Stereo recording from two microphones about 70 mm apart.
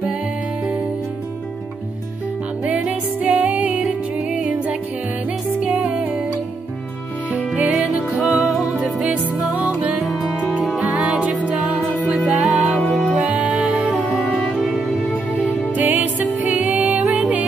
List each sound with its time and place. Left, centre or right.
2.6 s music: centre
5.8 s music: centre
7.3 s music: centre
7.8 s music: centre
10.9 s music: centre
12.2 s music: centre
13.3 s music: centre
13.9 s music: centre
15.7 s music: right